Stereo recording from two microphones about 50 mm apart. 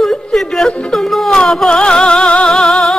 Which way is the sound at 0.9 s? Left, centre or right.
Centre.